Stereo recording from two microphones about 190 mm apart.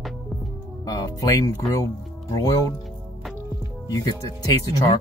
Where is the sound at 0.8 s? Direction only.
20° left (ahead or behind).